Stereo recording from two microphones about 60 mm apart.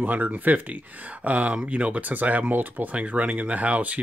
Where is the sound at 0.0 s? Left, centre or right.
Right.